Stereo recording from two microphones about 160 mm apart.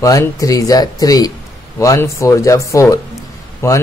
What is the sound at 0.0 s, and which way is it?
Speech, 20° left (ahead or behind).